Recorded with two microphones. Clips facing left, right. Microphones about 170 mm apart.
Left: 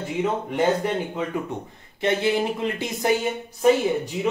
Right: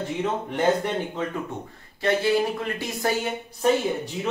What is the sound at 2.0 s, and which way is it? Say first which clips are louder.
A man's voice: even; 20° left (ahead or behind).